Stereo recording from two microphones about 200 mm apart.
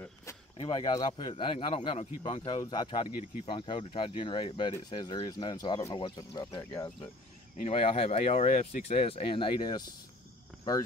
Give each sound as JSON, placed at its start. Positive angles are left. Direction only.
{"t": 0.0, "sound": "speech", "side_deg": 15}